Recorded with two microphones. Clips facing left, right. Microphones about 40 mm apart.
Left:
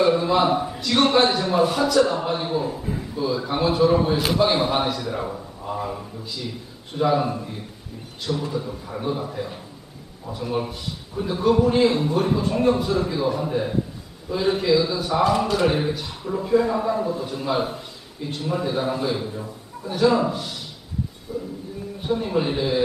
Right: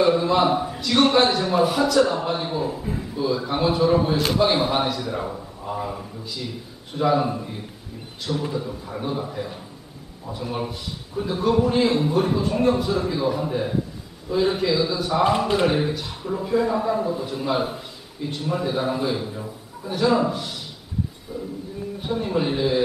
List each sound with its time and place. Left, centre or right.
0.0 s a man's voice: centre
8.5 s a man's voice: centre
15.2 s a man's voice: right
15.6 s a man's voice: centre
21.3 s a man's voice: centre
22.0 s a man's voice: centre